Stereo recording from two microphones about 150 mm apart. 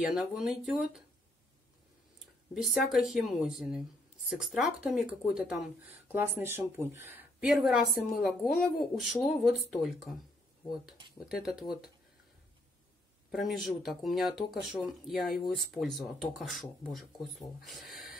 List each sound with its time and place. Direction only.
0.1 s speech: 5° right (ahead or behind)
2.5 s speech: centre (ahead or behind)
7.4 s speech: centre (ahead or behind)
11.4 s speech: 5° right (ahead or behind)
13.3 s speech: centre (ahead or behind)